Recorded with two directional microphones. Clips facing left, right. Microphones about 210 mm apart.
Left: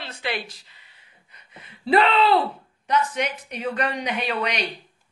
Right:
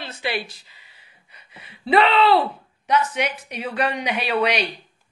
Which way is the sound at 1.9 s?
Centre (ahead or behind).